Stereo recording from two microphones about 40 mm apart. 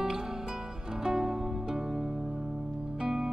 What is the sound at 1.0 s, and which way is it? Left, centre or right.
Music, centre.